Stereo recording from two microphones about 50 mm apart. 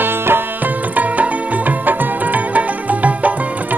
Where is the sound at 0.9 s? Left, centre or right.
Right.